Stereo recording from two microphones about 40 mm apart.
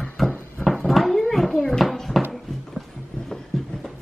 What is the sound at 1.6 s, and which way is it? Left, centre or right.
Bouncing, centre.